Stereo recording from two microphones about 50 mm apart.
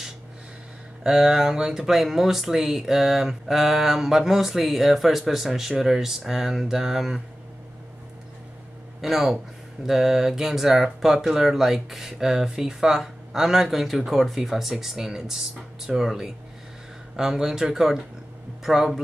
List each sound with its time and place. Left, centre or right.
1.0 s speech: centre
9.0 s speech: centre